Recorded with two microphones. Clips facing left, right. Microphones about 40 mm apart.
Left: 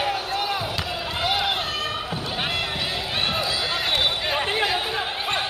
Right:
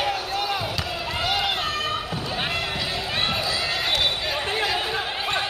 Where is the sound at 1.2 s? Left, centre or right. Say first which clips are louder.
Left 1 dB; centre.